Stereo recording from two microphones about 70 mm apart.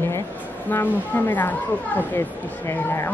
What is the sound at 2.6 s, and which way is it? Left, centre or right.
Speech, left.